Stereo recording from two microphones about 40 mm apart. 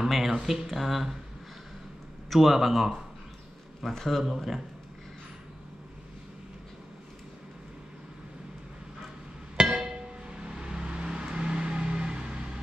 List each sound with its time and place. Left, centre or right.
0.0 s speech: centre
2.2 s speech: centre
9.6 s music: centre
10.4 s vehicle: right